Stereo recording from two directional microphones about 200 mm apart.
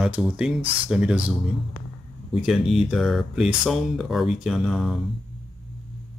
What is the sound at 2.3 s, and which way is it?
Speech, centre (ahead or behind).